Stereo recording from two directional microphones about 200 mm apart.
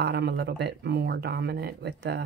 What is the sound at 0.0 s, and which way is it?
Speech, 55° right (ahead or behind).